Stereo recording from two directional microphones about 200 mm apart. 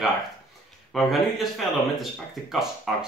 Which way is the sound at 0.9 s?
Centre (ahead or behind).